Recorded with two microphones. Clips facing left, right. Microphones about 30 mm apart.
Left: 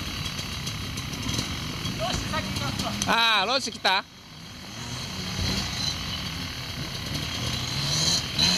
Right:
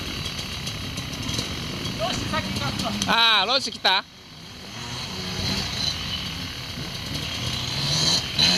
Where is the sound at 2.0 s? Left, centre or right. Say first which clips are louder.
Right 3 dB; centre.